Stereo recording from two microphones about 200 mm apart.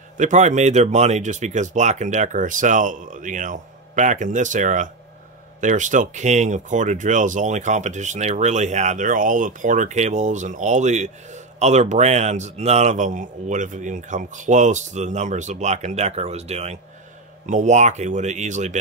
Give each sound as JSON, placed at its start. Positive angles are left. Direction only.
{"t": 0.2, "sound": "speech", "side_deg": -35}